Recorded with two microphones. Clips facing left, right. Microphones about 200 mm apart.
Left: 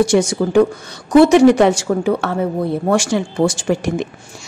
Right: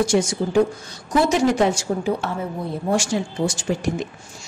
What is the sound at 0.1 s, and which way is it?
A woman's voice, 75° left (ahead or behind).